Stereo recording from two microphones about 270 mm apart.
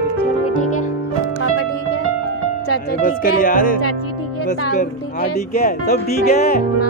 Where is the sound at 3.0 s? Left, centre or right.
Left.